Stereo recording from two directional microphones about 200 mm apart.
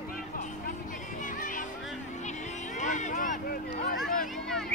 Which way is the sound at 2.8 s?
40° left (ahead or behind).